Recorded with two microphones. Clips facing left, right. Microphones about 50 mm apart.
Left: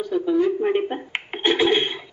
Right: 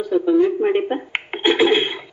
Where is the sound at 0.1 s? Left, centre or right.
Centre.